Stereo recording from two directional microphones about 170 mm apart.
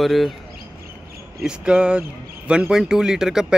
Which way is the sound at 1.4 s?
5° right (ahead or behind).